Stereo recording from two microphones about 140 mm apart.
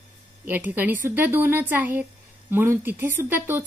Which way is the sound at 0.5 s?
10° right (ahead or behind).